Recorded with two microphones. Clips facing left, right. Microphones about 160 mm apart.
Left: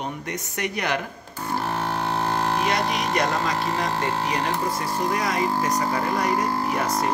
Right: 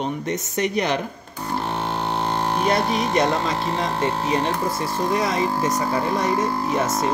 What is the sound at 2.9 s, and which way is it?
Speech, 25° right (ahead or behind).